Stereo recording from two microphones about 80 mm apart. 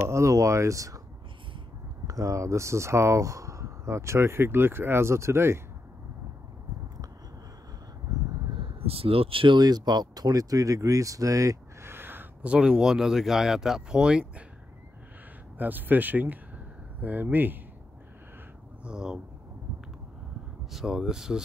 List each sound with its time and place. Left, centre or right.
0.1 s speech: right
2.0 s speech: right
8.3 s a sound: right
9.3 s speech: right
11.9 s a sound: right
12.4 s speech: centre
15.5 s speech: right
18.9 s speech: centre
20.7 s speech: centre